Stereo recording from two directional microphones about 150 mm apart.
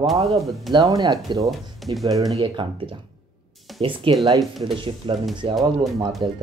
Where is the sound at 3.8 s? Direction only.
35° right (ahead or behind).